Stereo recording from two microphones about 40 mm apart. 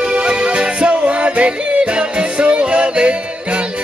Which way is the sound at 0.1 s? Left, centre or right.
Right.